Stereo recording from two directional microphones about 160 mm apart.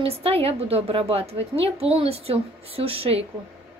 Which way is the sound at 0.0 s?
35° right (ahead or behind).